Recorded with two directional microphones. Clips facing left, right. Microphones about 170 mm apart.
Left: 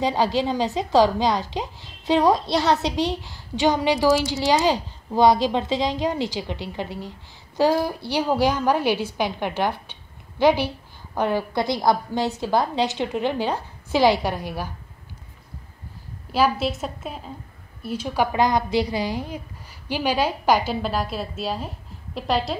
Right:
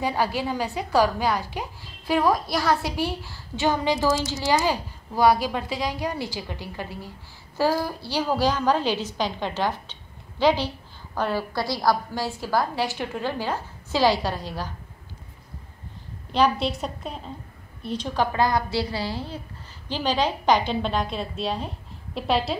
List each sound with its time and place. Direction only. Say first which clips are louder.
0.0 s a woman's voice: left 4 dB; 20° left (ahead or behind)
16.3 s a woman's voice: left 1 dB; 5° left (ahead or behind)